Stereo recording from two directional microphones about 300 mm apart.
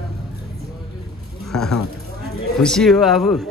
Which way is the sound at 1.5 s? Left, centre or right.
Centre.